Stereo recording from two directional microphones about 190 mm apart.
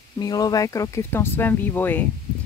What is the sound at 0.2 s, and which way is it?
Speech, 20° left (ahead or behind).